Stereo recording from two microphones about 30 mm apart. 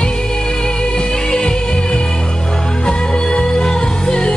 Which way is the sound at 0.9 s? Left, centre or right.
Left.